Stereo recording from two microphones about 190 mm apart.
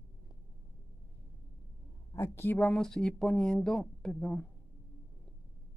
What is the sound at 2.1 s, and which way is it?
Speech, 15° left (ahead or behind).